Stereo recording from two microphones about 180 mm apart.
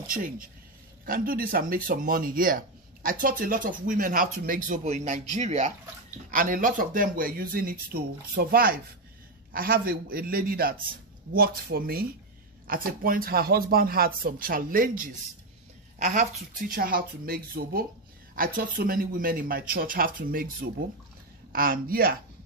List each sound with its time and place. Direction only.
0.0 s speech: 50° right (ahead or behind)
21.5 s speech: 55° right (ahead or behind)